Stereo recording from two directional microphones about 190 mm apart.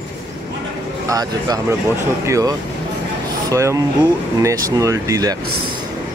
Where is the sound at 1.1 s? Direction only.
20° right (ahead or behind).